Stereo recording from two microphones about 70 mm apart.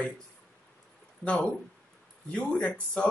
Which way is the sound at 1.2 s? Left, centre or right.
Centre.